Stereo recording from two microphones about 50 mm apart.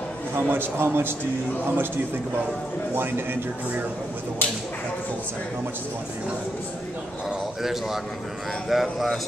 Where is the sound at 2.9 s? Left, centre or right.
Right.